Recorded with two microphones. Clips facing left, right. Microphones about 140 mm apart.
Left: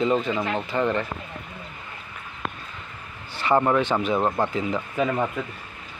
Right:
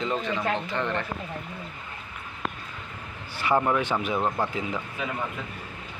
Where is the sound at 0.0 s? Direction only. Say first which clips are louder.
Left 5 dB; 5° left (ahead or behind).